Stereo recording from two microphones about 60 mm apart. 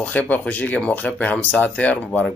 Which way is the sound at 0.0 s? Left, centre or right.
Left.